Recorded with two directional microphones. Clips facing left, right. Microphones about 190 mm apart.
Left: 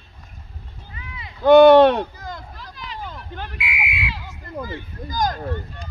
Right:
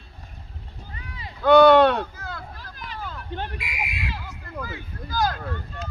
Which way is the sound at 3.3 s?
40° right (ahead or behind).